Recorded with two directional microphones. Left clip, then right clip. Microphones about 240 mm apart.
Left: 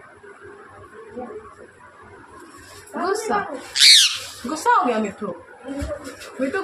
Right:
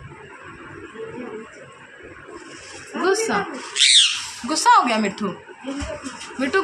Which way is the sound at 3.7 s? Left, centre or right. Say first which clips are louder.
Left 2 dB; centre.